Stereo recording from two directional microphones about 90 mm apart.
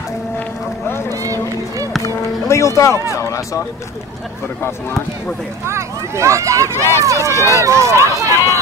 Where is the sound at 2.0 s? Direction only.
35° left (ahead or behind).